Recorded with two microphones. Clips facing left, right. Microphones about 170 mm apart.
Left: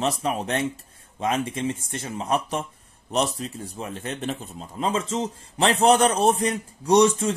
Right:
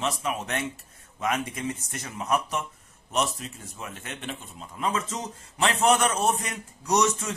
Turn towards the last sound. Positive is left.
turn(degrees=30)  # may be behind; listen again after turning